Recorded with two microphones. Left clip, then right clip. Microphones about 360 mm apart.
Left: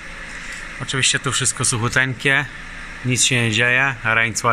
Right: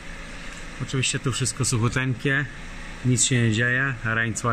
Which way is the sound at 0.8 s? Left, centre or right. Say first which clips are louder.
Left 8 dB; centre.